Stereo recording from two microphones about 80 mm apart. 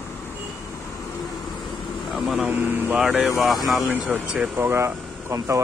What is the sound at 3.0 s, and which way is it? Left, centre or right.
Speech, centre.